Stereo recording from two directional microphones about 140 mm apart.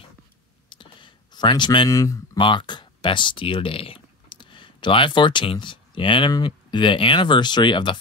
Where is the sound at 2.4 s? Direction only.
35° left (ahead or behind).